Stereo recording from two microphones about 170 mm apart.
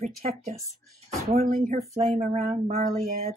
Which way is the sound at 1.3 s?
55° right (ahead or behind).